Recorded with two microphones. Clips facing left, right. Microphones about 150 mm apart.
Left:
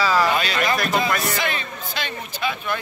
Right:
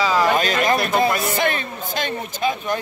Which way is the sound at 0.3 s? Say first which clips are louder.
Right 3 dB; 45° right (ahead or behind).